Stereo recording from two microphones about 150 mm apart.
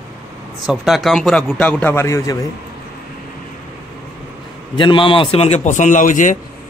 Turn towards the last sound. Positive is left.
turn(degrees=60)  # may be behind; listen again after turning